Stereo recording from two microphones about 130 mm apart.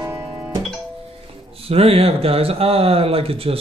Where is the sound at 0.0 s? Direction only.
15° right (ahead or behind).